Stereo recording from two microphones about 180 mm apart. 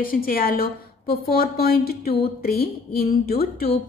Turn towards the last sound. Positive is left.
turn(degrees=55)  # may be behind; listen again after turning